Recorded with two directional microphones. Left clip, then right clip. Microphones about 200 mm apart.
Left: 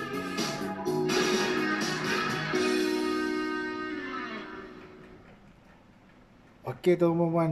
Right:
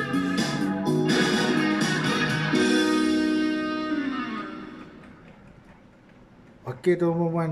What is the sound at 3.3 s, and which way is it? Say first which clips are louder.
Music: right 6 dB; 45° right (ahead or behind).